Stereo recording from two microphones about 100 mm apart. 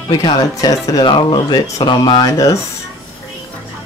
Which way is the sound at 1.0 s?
60° left (ahead or behind).